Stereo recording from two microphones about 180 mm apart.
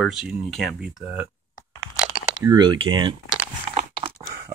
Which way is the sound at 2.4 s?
25° right (ahead or behind).